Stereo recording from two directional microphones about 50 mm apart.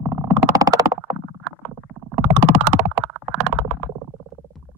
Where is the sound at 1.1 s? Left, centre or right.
Right.